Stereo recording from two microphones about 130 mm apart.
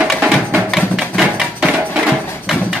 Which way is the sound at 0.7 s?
5° right (ahead or behind).